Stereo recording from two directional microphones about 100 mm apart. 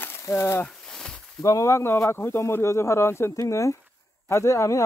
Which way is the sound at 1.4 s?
30° left (ahead or behind).